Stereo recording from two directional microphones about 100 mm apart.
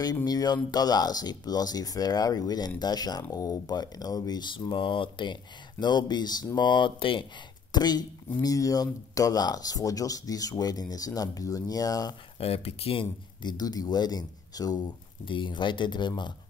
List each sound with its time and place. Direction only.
0.0 s speech: 40° left (ahead or behind); by 7.2 s 60° left (ahead or behind)
7.7 s speech: 45° left (ahead or behind)
12.4 s speech: 75° left (ahead or behind); by 14.9 s 40° left (ahead or behind)
15.2 s speech: 55° left (ahead or behind)